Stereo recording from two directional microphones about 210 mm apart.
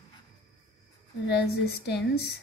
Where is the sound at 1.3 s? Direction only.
50° left (ahead or behind).